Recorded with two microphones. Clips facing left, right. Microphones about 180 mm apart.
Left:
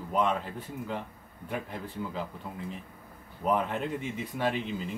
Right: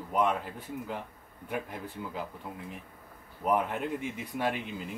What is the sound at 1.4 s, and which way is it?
Speech, 10° right (ahead or behind).